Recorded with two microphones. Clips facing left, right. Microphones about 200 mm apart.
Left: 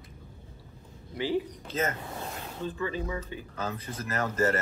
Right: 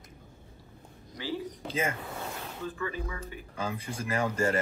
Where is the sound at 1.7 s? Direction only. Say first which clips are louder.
Even; 10° right (ahead or behind).